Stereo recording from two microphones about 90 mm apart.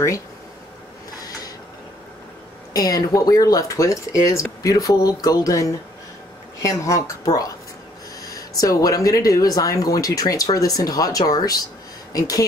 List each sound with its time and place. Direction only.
2.7 s speech: 45° left (ahead or behind)